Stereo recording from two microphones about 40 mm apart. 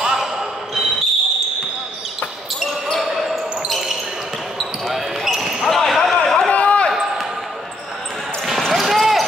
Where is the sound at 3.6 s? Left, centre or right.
Centre.